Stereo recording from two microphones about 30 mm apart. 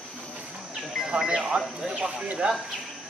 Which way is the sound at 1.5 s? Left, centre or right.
Right.